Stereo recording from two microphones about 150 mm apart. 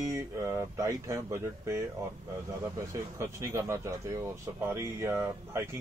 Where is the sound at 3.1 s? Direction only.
15° right (ahead or behind).